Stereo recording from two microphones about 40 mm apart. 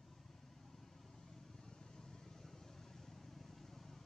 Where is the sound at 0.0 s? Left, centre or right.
Centre.